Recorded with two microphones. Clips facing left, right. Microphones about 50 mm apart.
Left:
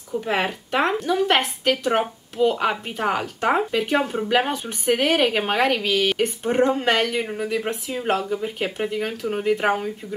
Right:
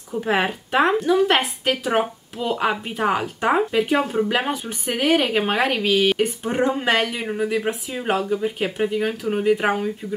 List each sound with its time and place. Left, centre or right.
0.1 s a woman's voice: centre